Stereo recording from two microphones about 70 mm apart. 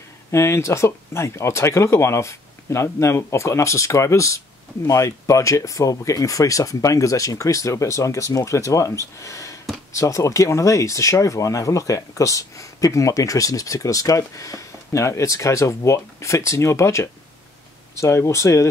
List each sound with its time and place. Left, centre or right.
0.3 s speech: left